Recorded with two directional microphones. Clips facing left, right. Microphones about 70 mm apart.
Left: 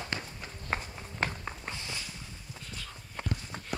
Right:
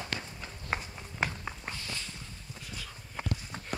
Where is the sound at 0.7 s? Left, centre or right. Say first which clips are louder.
Left 1 dB; centre.